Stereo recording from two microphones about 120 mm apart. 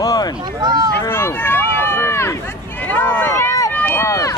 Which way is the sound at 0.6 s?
35° right (ahead or behind).